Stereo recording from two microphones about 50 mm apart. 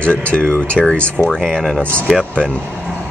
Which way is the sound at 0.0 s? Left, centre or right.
Left.